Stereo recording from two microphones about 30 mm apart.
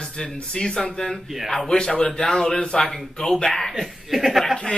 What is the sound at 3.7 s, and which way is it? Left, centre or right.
Speech, centre.